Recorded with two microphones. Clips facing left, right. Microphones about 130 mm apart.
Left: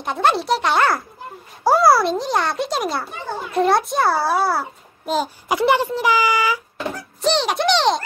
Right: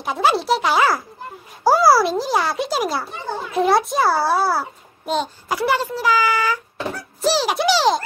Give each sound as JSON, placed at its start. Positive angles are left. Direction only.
{"t": 0.0, "sound": "a child's voice", "side_deg": -5}
{"t": 5.5, "sound": "speech", "side_deg": 20}
{"t": 6.9, "sound": "speech", "side_deg": -5}